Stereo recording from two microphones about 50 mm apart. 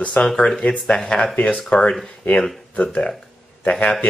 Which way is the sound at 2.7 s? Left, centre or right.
Left.